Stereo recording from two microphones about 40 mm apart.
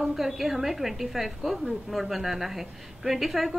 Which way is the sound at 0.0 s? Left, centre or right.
Centre.